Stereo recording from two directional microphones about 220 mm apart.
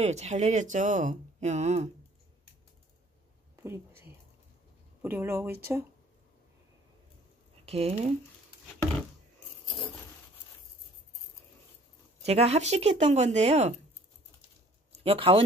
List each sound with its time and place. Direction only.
0.0 s speech: 30° right (ahead or behind)
3.5 s a sound: 10° right (ahead or behind)
5.0 s speech: 10° right (ahead or behind)
7.6 s speech: 30° right (ahead or behind)
12.2 s speech: 30° right (ahead or behind)
15.0 s speech: 25° right (ahead or behind)